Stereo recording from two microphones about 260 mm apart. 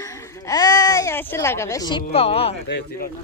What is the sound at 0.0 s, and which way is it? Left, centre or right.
Speech, centre.